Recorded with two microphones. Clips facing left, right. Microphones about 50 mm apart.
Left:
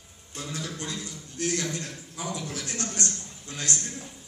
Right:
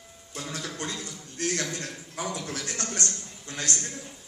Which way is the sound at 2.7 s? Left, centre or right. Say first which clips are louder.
Even; right.